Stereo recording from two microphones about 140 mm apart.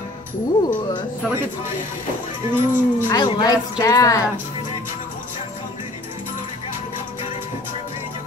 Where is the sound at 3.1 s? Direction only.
30° left (ahead or behind).